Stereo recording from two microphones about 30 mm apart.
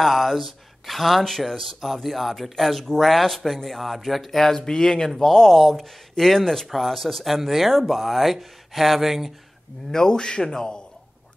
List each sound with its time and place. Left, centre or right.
0.0 s speech: centre
5.6 s speech: centre
6.1 s speech: centre
9.8 s speech: left